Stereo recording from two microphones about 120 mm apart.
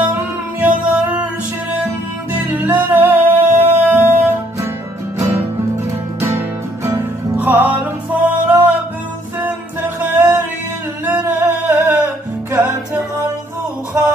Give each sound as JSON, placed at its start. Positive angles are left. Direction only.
{"t": 0.0, "sound": "music", "side_deg": -15}
{"t": 2.3, "sound": "music", "side_deg": -15}
{"t": 6.2, "sound": "music", "side_deg": -25}
{"t": 9.9, "sound": "music", "side_deg": -15}